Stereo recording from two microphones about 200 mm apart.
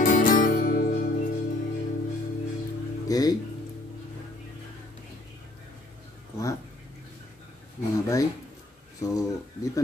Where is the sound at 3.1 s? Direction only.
20° left (ahead or behind).